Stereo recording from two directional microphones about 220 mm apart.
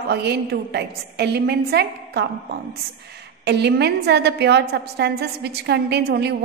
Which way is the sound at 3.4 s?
50° right (ahead or behind).